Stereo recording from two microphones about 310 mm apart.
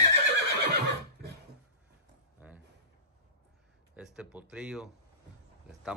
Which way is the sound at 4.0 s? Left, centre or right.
Centre.